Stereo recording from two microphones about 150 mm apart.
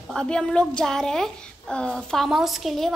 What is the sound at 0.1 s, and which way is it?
A child's voice, 5° left (ahead or behind).